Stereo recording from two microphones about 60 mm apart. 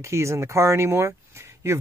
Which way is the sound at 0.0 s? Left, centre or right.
Right.